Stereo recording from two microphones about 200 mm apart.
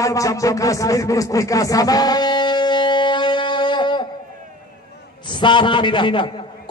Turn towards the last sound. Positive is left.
turn(degrees=25)  # may be behind; listen again after turning